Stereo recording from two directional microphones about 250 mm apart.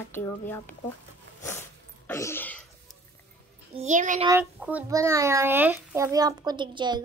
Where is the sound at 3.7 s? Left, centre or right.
Right.